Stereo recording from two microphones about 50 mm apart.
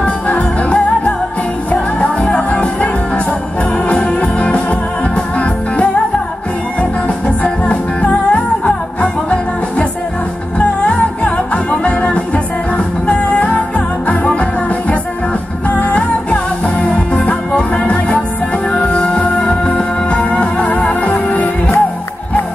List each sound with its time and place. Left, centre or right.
0.0 s music: left
15.7 s music: left